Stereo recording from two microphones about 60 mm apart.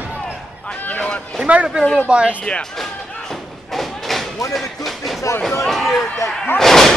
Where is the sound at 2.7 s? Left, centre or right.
Centre.